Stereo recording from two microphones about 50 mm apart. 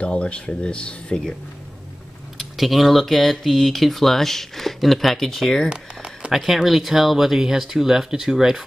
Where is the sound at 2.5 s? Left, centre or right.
Centre.